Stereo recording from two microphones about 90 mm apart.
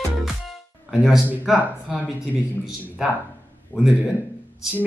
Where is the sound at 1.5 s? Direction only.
15° right (ahead or behind).